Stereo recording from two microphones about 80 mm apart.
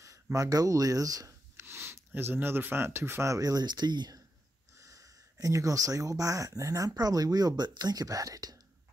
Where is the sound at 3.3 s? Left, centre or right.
Right.